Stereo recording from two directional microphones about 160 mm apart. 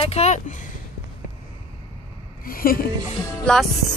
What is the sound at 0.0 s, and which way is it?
Speech, 40° left (ahead or behind).